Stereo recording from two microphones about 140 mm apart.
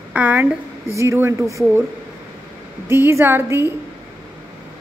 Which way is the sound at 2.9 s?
15° right (ahead or behind).